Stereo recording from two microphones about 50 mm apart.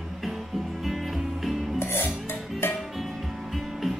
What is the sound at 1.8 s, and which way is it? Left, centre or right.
Music, left.